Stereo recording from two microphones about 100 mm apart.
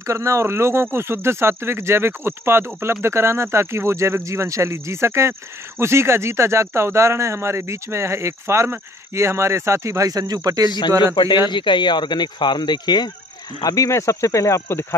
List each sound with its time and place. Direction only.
0.0 s speech: 30° right (ahead or behind)
11.1 s speech: 50° left (ahead or behind); by 15.0 s 25° left (ahead or behind)